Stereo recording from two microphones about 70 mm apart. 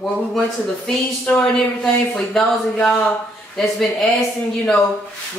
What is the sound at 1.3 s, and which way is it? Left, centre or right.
Speech, left.